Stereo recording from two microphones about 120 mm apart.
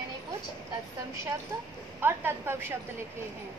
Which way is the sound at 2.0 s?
20° right (ahead or behind).